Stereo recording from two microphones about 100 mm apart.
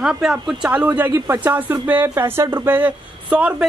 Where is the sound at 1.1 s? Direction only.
30° right (ahead or behind).